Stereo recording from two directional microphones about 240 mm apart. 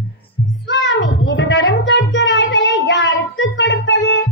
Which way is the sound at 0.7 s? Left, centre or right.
Left.